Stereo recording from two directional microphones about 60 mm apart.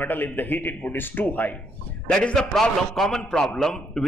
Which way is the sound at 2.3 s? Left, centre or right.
Centre.